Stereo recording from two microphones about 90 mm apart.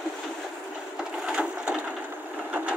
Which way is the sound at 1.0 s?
10° right (ahead or behind).